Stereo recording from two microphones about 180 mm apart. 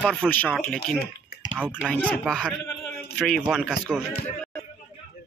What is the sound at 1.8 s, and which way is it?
A man's voice, 10° left (ahead or behind).